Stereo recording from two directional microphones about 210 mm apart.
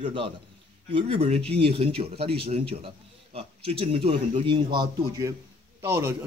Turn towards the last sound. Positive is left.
turn(degrees=-10)  # may be behind; listen again after turning